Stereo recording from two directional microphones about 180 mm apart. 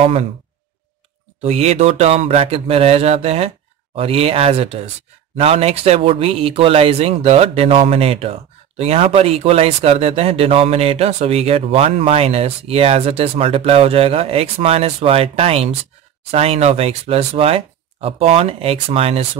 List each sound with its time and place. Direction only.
0.0 s speech: 30° right (ahead or behind)
1.4 s speech: 35° right (ahead or behind)